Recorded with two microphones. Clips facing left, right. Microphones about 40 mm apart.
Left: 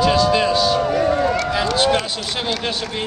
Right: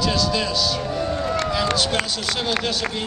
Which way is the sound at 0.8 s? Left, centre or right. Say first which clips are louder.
Left 7 dB; left.